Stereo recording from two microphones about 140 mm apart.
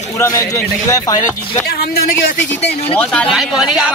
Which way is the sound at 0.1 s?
20° left (ahead or behind).